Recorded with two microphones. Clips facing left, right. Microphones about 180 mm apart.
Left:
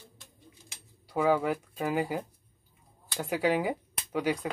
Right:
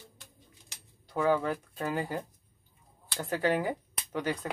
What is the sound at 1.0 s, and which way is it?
Speech, 10° left (ahead or behind).